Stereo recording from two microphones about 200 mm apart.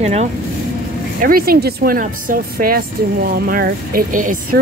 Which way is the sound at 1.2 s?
45° right (ahead or behind).